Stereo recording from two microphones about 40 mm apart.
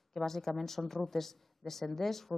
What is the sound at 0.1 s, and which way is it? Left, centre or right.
A woman's voice, centre.